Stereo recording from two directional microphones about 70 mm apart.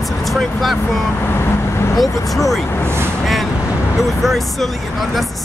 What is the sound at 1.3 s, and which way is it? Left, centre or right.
Vehicle, left.